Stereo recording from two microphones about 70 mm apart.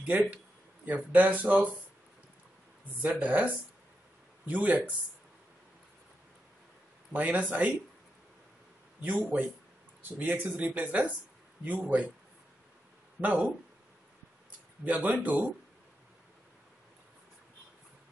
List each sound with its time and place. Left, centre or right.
0.0 s speech: right
3.0 s speech: right
7.1 s speech: right
9.0 s speech: right
13.2 s speech: centre
14.9 s speech: right